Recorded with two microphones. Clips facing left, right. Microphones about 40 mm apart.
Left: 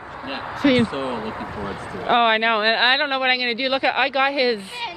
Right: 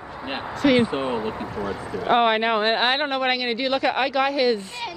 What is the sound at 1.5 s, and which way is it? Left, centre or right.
Speech, centre.